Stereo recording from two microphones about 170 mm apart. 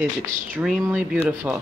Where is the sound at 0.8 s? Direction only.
10° right (ahead or behind).